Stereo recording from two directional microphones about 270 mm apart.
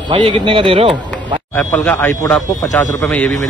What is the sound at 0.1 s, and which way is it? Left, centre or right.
A man's voice, centre.